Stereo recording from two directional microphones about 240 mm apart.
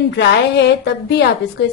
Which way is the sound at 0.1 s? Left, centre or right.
Left.